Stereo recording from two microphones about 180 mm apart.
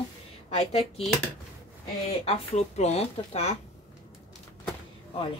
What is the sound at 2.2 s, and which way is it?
A woman's voice, 35° left (ahead or behind).